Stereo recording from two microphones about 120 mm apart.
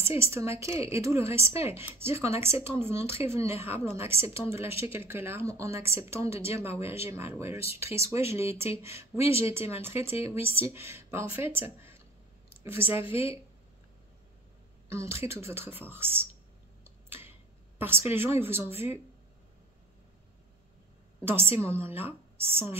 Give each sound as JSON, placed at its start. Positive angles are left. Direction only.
{"t": 0.0, "sound": "a woman's voice", "side_deg": -20}
{"t": 13.1, "sound": "speech", "side_deg": 50}
{"t": 14.9, "sound": "a woman's voice", "side_deg": -20}
{"t": 17.7, "sound": "a woman's voice", "side_deg": -20}
{"t": 21.2, "sound": "a woman's voice", "side_deg": -20}